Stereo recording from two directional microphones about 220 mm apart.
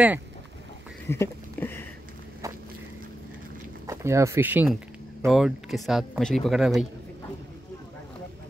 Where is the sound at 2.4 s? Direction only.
15° right (ahead or behind).